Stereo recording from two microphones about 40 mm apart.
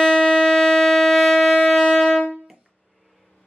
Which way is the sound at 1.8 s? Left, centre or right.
Centre.